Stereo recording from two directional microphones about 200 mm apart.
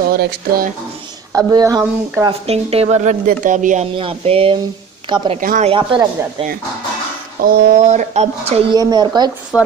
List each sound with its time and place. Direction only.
0.1 s speech: 50° right (ahead or behind)
1.3 s speech: 15° right (ahead or behind)
2.4 s speech: 30° right (ahead or behind)
5.4 s speech: 45° right (ahead or behind)
5.7 s speech: 25° right (ahead or behind)
7.4 s speech: 50° right (ahead or behind)
7.8 s speech: 35° right (ahead or behind)
8.7 s speech: 20° right (ahead or behind)
9.5 s a woman's voice: 15° left (ahead or behind)